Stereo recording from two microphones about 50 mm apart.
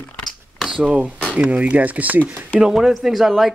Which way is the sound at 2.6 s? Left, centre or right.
Centre.